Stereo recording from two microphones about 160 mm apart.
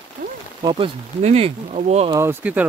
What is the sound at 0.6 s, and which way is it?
Speech, 30° right (ahead or behind).